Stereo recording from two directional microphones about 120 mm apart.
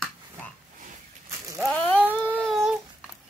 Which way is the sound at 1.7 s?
15° left (ahead or behind).